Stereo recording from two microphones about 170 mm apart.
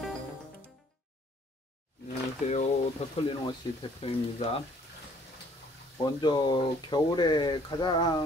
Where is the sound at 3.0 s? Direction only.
40° left (ahead or behind).